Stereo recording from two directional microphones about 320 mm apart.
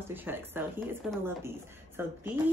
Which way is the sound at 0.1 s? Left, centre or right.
Centre.